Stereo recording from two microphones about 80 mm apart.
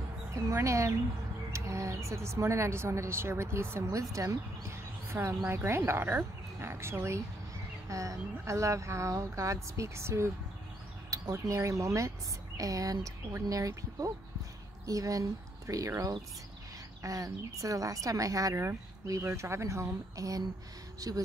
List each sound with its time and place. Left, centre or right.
0.3 s a sound: right
1.5 s speech: right
11.1 s speech: right